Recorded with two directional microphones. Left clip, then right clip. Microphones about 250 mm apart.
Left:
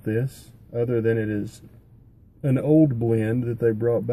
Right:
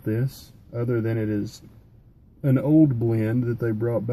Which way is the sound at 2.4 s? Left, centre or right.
Centre.